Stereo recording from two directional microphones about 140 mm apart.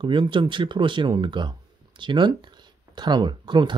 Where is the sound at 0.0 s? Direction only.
35° right (ahead or behind).